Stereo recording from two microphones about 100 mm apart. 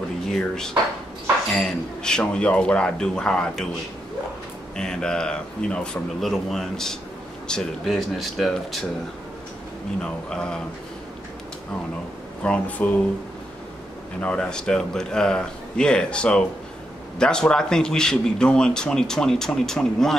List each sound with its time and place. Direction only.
0.3 s a man's voice: 5° left (ahead or behind)
4.7 s a man's voice: 5° left (ahead or behind)
10.0 s a man's voice: 10° left (ahead or behind)
12.4 s a man's voice: 15° left (ahead or behind)
14.2 s a man's voice: 10° left (ahead or behind)